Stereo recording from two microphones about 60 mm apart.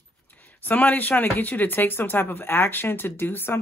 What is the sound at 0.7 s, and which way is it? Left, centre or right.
Speech, left.